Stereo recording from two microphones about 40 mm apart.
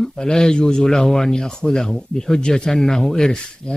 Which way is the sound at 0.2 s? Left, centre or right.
Centre.